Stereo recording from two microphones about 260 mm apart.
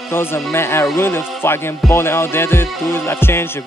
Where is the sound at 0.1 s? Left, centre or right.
Centre.